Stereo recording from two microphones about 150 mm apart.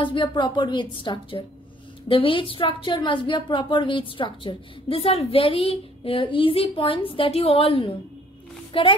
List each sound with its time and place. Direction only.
0.0 s a woman's voice: 30° left (ahead or behind)